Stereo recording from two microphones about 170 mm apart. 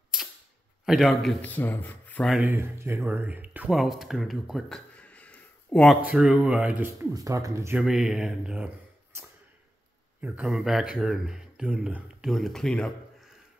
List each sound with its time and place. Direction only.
0.8 s speech: centre (ahead or behind)
2.4 s speech: 15° right (ahead or behind)
7.8 s speech: centre (ahead or behind)
10.2 s speech: 5° right (ahead or behind)